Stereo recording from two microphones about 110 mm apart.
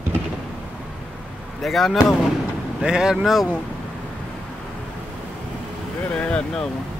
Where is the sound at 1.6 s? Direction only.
Centre (ahead or behind).